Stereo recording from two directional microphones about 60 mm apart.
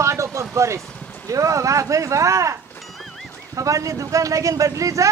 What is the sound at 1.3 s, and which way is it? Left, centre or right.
Speech, right.